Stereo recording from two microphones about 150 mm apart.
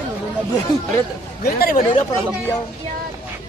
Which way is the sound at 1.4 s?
80° left.